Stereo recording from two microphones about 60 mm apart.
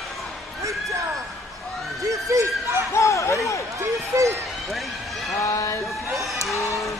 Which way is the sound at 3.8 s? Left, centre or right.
Right.